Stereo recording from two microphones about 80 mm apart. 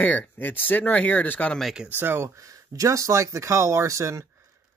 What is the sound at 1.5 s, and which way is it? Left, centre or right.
Speech, centre.